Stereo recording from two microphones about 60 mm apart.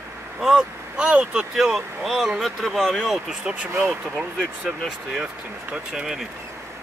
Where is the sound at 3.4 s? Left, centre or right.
Centre.